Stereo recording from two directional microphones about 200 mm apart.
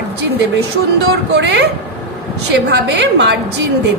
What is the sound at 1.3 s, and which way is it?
Speech, 65° right (ahead or behind).